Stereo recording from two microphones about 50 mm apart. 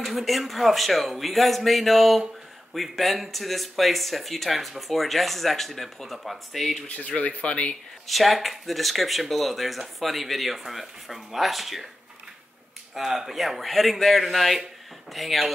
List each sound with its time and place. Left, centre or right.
0.0 s speech: centre
6.9 s speech: left
8.1 s speech: centre
12.9 s speech: centre